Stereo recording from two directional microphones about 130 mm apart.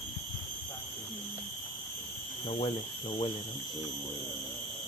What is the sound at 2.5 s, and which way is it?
Speech, 45° left (ahead or behind).